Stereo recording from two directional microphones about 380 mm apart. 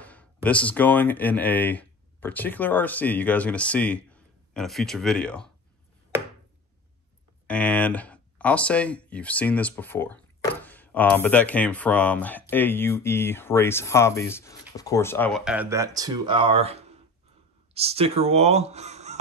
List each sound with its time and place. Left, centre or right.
0.0 s speech: centre
7.4 s speech: centre